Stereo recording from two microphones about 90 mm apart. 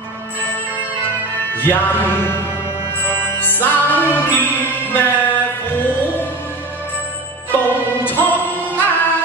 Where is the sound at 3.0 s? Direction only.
20° left (ahead or behind).